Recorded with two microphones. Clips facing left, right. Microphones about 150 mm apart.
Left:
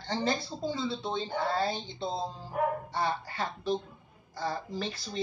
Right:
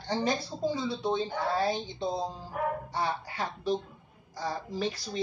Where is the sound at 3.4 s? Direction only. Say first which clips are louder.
Right 1 dB; 10° right (ahead or behind).